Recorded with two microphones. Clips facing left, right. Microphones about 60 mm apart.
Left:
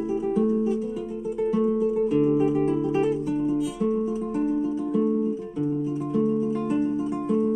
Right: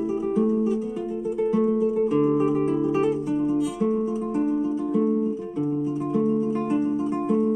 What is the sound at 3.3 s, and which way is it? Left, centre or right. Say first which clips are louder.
Music: right 1 dB; right.